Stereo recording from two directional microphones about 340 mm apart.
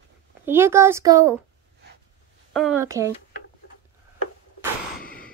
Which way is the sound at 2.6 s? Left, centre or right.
Centre.